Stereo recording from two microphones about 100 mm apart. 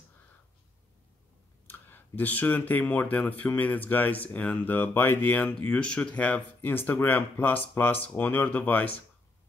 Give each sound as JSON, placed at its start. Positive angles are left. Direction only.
{"t": 1.7, "sound": "speech", "side_deg": 20}